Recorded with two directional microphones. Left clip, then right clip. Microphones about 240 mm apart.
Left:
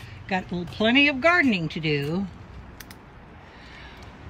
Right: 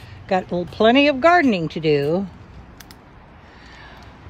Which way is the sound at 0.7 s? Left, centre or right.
Centre.